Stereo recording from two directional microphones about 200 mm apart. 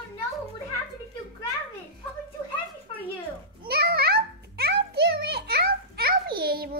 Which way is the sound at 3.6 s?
50° right (ahead or behind).